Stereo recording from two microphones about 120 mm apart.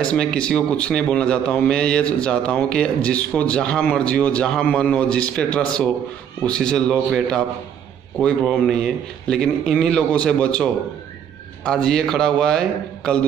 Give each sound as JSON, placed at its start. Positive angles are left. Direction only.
{"t": 0.0, "sound": "speech", "side_deg": 5}
{"t": 8.2, "sound": "a man's voice", "side_deg": 10}